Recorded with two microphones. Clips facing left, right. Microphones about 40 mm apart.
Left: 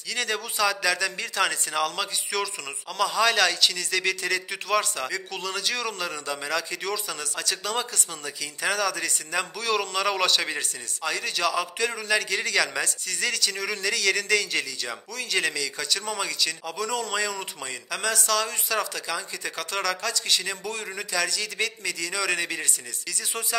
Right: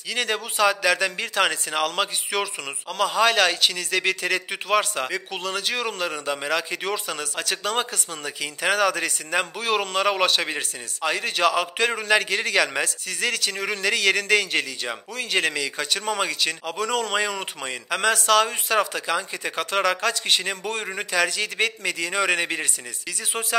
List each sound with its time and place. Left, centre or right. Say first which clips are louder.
0.1 s a man's voice: right 3 dB; right
10.6 s speech: right 3 dB; right
20.0 s speech: right 4 dB; right